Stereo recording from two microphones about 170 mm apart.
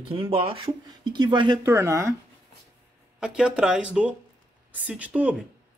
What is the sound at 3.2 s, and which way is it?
Speech, 5° right (ahead or behind).